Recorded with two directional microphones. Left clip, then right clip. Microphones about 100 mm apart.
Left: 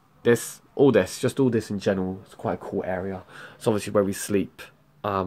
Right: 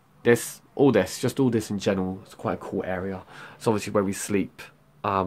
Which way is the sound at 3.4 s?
20° left (ahead or behind).